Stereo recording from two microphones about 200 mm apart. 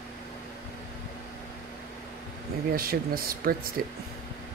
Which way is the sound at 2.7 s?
45° right (ahead or behind).